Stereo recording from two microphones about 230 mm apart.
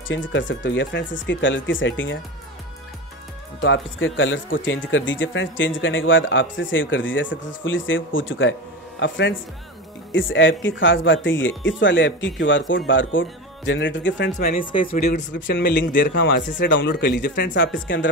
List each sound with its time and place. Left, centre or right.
0.1 s speech: left
3.6 s speech: left
14.4 s a man's voice: left
17.7 s speech: left